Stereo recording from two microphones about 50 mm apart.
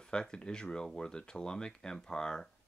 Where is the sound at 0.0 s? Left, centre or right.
Centre.